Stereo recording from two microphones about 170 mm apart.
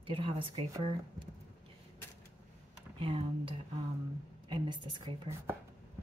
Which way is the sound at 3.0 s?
30° right (ahead or behind).